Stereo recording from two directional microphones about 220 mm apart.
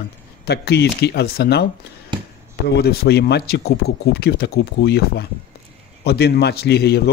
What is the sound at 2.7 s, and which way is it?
Speech, 45° left (ahead or behind).